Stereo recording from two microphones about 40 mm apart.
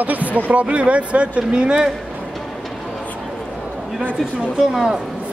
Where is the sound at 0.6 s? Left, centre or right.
Right.